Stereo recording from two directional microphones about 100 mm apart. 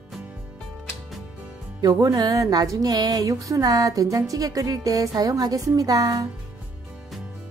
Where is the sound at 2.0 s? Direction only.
35° right (ahead or behind).